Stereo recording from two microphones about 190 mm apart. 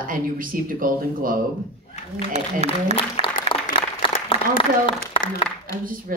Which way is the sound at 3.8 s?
30° left (ahead or behind).